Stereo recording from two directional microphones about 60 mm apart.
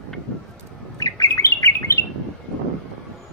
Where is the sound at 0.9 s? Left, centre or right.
Left.